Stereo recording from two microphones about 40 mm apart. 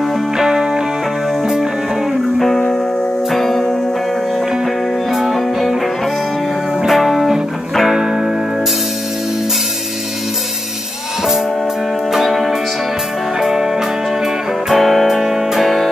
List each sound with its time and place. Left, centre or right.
0.4 s music: centre
2.3 s music: centre
5.1 s music: centre
6.9 s music: centre
7.9 s music: centre
12.1 s music: centre
14.7 s music: centre
15.1 s music: centre
15.6 s music: centre